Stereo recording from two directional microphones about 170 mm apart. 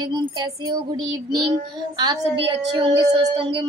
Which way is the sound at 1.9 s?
25° right (ahead or behind).